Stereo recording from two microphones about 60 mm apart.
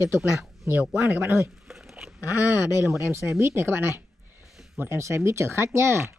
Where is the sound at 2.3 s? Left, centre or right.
Right.